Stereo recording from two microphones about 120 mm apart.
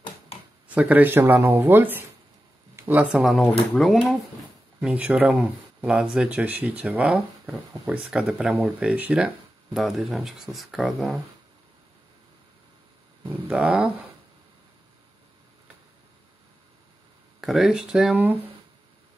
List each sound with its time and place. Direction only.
0.7 s speech: 10° right (ahead or behind)
13.3 s speech: 5° right (ahead or behind)
17.4 s speech: centre (ahead or behind)